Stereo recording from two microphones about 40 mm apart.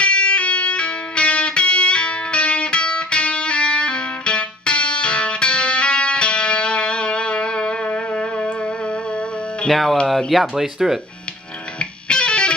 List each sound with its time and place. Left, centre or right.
0.0 s music: left
9.7 s speech: centre
10.6 s speech: centre
11.8 s music: left